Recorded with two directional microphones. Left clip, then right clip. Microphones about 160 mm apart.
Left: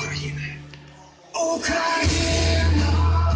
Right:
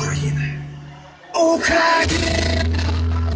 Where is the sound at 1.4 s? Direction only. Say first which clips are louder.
Right 7 dB; 30° right (ahead or behind).